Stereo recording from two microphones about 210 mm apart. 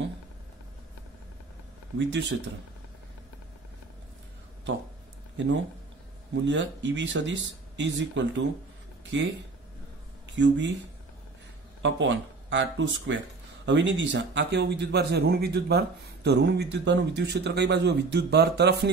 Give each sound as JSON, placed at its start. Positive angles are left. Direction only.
{"t": 2.0, "sound": "speech", "side_deg": -60}
{"t": 6.3, "sound": "speech", "side_deg": -60}
{"t": 10.2, "sound": "speech", "side_deg": -60}
{"t": 11.8, "sound": "speech", "side_deg": -60}